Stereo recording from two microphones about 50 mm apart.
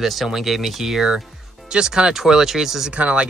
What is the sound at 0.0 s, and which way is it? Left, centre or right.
Speech, centre.